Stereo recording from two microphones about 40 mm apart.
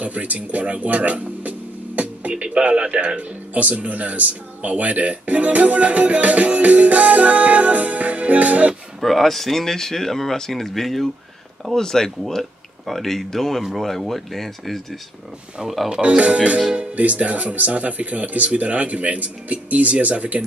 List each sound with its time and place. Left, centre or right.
0.0 s speech: right
9.0 s speech: centre
11.7 s speech: centre
15.9 s speech: right